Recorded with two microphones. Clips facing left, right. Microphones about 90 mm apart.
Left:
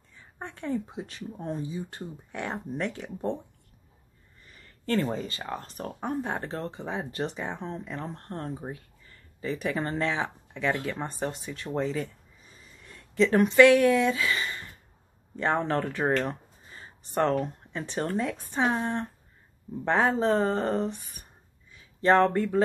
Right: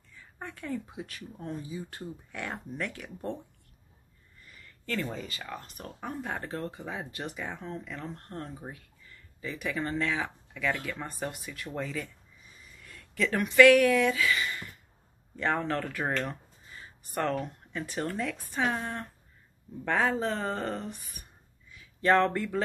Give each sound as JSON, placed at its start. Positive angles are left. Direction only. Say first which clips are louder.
{"t": 0.1, "sound": "speech", "louder": "left 2 dB", "side_deg": 25}
{"t": 4.6, "sound": "speech", "louder": "left 7 dB", "side_deg": 35}